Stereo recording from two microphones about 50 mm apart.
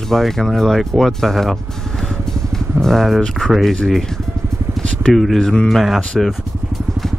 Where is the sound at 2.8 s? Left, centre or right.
Centre.